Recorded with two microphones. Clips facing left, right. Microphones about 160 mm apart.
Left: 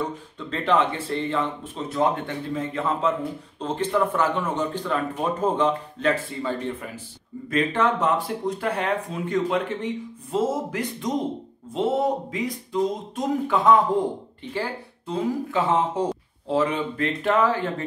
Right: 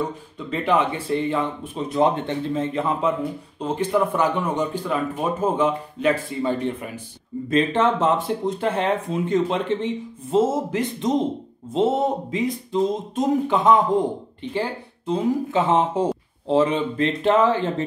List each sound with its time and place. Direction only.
0.0 s speech: 10° right (ahead or behind)
7.4 s speech: 25° right (ahead or behind)